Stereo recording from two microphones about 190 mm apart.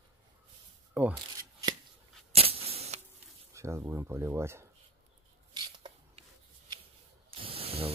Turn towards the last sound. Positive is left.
turn(degrees=-30)  # may be behind; listen again after turning